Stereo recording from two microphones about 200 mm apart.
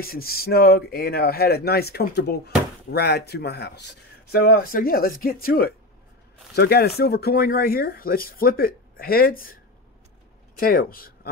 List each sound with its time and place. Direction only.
0.0 s speech: 50° left (ahead or behind)